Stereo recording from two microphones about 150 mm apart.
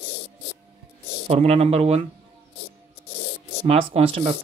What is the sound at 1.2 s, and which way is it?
Speech, 40° right (ahead or behind).